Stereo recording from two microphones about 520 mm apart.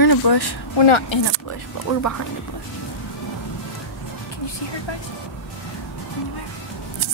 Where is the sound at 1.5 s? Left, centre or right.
Left.